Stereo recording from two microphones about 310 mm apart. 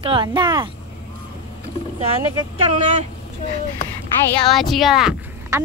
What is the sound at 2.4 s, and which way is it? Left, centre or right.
Speech, right.